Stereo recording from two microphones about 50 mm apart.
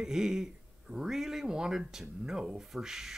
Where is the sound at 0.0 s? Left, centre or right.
Centre.